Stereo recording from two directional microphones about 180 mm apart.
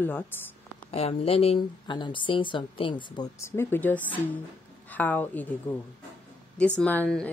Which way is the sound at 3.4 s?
15° left (ahead or behind).